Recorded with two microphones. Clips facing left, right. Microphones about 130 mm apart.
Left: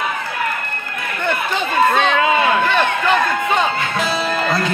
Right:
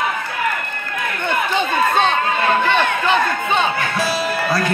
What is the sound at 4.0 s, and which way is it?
Music, 20° left (ahead or behind).